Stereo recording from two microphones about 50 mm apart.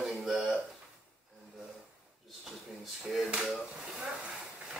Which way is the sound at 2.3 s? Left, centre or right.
Centre.